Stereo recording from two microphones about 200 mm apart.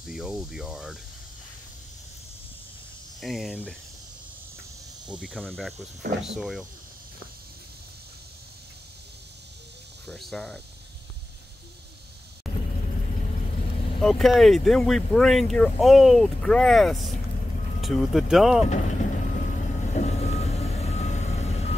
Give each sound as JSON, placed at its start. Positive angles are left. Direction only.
{"t": 0.0, "sound": "speech", "side_deg": 0}
{"t": 3.2, "sound": "speech", "side_deg": 0}
{"t": 5.0, "sound": "speech", "side_deg": -5}
{"t": 10.0, "sound": "speech", "side_deg": 0}
{"t": 12.4, "sound": "vehicle", "side_deg": 0}
{"t": 14.0, "sound": "speech", "side_deg": 0}
{"t": 18.7, "sound": "vehicle", "side_deg": 35}